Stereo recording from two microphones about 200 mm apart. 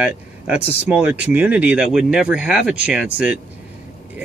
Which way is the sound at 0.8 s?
5° right (ahead or behind).